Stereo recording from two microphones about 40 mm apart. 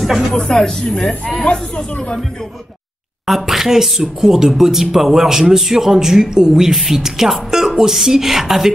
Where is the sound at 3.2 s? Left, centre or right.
Centre.